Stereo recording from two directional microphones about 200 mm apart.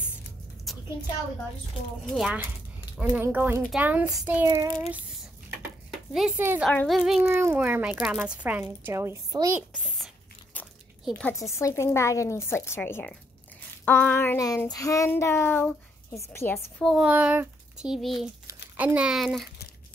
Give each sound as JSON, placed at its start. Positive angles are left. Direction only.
{"t": 0.7, "sound": "a sound", "side_deg": 0}
{"t": 2.1, "sound": "a child's voice", "side_deg": 0}
{"t": 4.5, "sound": "a child's voice", "side_deg": -20}
{"t": 5.9, "sound": "a woman's voice", "side_deg": 0}
{"t": 6.7, "sound": "a woman's voice", "side_deg": 10}
{"t": 7.0, "sound": "a child's voice", "side_deg": -5}
{"t": 9.6, "sound": "a sound", "side_deg": 0}
{"t": 11.3, "sound": "a woman's voice", "side_deg": 15}
{"t": 16.7, "sound": "speech", "side_deg": 0}